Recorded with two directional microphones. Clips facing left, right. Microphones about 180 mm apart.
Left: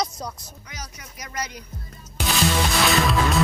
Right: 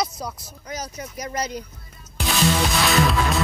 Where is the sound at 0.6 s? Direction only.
35° right (ahead or behind).